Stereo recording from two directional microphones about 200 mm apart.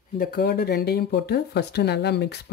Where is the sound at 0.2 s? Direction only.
50° left (ahead or behind).